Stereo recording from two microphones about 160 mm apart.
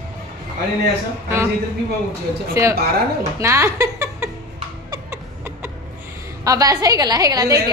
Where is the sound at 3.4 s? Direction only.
20° right (ahead or behind).